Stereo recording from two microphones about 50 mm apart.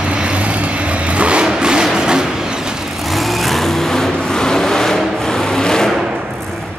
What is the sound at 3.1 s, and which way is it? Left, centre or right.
Vehicle, centre.